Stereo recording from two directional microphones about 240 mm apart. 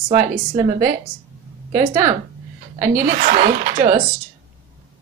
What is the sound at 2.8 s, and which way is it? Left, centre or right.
A woman's voice, right.